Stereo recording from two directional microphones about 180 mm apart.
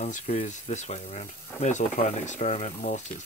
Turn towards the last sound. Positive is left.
turn(degrees=40)  # may be behind; listen again after turning